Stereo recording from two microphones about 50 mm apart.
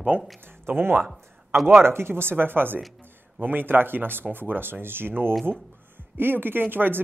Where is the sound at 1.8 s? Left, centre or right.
Right.